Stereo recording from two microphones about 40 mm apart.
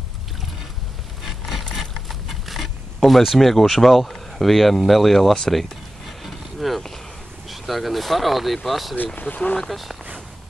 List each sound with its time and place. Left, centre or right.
1.2 s rub: centre
1.8 s a sound: centre
3.0 s speech: centre
5.5 s a sound: centre
7.4 s speech: centre
8.9 s speech: left
9.6 s speech: centre